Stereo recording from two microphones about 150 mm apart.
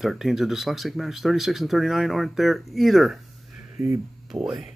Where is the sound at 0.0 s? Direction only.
Centre (ahead or behind).